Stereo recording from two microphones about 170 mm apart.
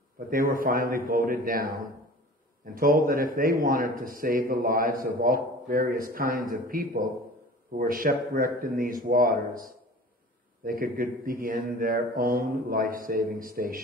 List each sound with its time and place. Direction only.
0.3 s a man's voice: 55° right (ahead or behind)